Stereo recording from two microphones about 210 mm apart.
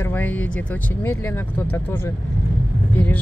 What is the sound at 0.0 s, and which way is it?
Speech, 10° left (ahead or behind).